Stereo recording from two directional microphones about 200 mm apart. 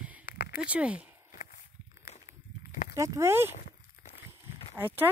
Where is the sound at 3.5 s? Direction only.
40° left (ahead or behind).